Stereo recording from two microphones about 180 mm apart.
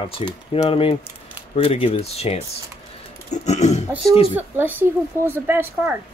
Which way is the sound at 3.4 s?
40° left (ahead or behind).